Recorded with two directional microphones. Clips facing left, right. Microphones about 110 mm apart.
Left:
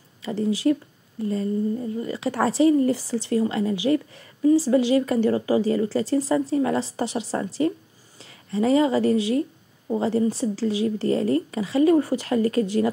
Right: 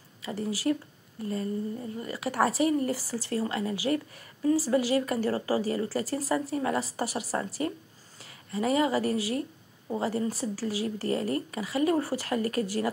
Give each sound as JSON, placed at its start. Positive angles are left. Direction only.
{"t": 0.2, "sound": "speech", "side_deg": 25}